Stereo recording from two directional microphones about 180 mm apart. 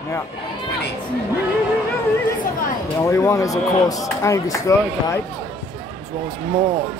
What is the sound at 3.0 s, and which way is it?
Speech, 15° left (ahead or behind).